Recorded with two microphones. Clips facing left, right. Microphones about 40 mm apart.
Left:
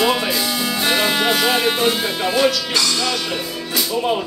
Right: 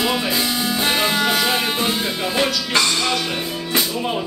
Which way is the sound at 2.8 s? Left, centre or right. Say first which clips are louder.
Right 1 dB; right.